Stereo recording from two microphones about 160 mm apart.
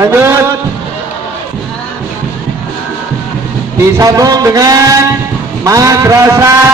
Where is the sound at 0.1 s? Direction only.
15° right (ahead or behind).